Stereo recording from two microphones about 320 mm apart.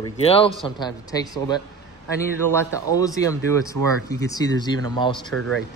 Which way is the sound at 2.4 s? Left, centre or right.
Centre.